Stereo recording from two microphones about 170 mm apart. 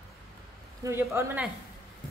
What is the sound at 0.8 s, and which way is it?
Speech, 15° right (ahead or behind).